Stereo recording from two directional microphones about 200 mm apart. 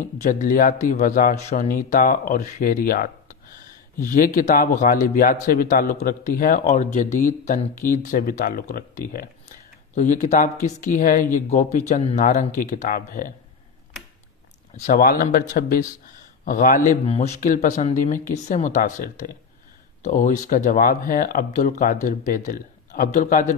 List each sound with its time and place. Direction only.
0.0 s a man's voice: 40° left (ahead or behind)
14.8 s a man's voice: 40° left (ahead or behind)